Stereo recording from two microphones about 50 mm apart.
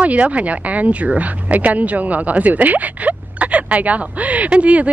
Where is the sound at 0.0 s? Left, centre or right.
Right.